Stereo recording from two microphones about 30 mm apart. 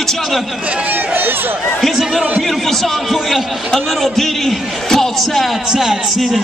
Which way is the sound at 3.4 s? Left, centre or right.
Centre.